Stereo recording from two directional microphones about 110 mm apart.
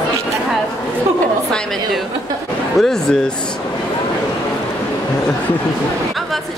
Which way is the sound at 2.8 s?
5° left (ahead or behind).